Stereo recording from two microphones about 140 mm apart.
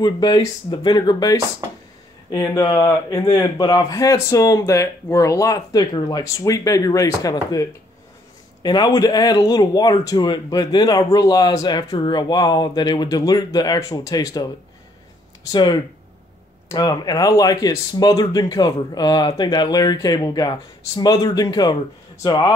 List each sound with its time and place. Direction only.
0.0 s speech: 30° left (ahead or behind)
1.6 s a sound: 25° right (ahead or behind)
2.3 s speech: 25° left (ahead or behind)
8.6 s speech: 30° left (ahead or behind)
15.5 s speech: 30° left (ahead or behind)